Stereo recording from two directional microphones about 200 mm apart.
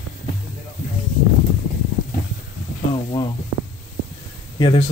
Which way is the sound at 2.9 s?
25° left (ahead or behind).